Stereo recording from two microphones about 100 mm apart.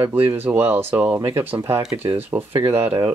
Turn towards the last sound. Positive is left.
turn(degrees=-25)  # may be behind; listen again after turning